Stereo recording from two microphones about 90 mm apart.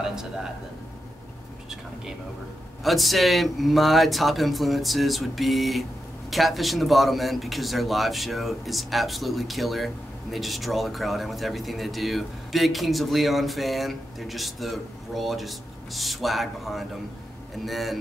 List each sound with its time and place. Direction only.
0.1 s speech: 5° right (ahead or behind)
2.8 s speech: centre (ahead or behind)